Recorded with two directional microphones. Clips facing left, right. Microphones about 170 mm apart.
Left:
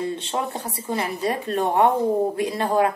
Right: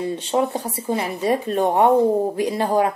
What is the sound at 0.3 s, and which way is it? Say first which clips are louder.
A woman's voice: right 6 dB; 10° right (ahead or behind).